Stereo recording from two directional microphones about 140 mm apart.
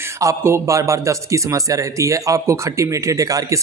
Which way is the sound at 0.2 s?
20° right (ahead or behind).